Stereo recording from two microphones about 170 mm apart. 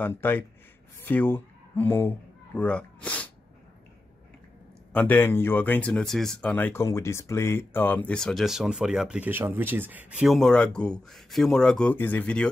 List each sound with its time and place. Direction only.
0.0 s speech: 10° left (ahead or behind)
4.9 s speech: 10° left (ahead or behind)